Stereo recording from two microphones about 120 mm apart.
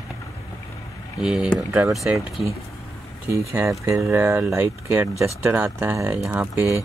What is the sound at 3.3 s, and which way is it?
Speech, 25° right (ahead or behind).